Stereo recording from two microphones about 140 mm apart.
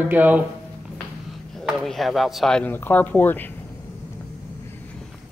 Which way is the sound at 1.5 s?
Centre (ahead or behind).